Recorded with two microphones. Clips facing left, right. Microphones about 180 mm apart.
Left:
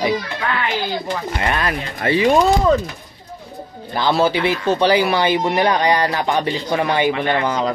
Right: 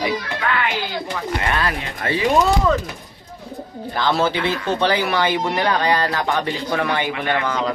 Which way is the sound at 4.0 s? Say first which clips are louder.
Left 3 dB; 10° left (ahead or behind).